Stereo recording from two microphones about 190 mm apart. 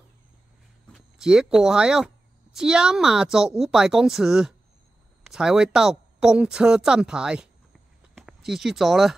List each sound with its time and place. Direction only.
0.9 s a woman's voice: 5° right (ahead or behind)